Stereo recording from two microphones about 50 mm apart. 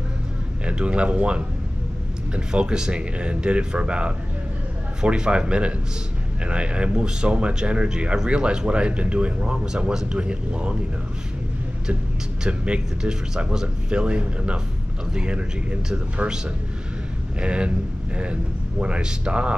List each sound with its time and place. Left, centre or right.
0.7 s speech: right
12.4 s speech: right
17.4 s speech: right